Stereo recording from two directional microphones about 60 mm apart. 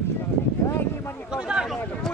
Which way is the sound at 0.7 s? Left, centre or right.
Left.